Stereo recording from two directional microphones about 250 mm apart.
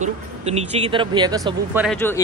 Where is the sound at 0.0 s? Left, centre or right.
Right; by 2.0 s centre.